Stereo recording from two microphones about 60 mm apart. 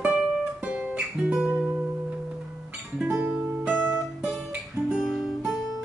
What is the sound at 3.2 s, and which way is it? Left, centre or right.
Music, right.